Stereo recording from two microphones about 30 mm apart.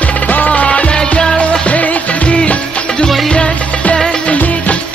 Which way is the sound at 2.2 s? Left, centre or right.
Left.